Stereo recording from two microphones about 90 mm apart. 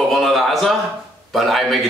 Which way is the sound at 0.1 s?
Centre (ahead or behind).